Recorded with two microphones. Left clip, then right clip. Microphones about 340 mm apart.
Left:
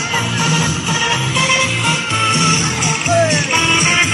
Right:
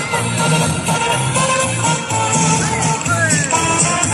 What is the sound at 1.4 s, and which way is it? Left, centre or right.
Music, right.